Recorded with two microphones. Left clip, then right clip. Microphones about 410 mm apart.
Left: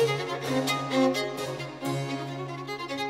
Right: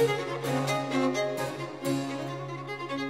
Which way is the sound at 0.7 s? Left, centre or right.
Left.